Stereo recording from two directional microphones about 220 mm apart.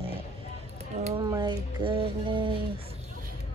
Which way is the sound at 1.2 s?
20° right (ahead or behind).